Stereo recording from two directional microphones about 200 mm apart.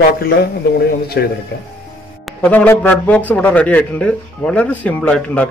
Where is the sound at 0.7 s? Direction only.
50° left (ahead or behind).